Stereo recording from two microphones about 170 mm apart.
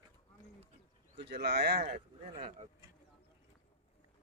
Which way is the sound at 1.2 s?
75° right (ahead or behind).